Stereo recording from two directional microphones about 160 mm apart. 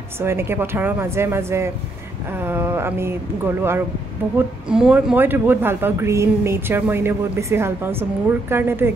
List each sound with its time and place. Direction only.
0.2 s speech: 15° right (ahead or behind)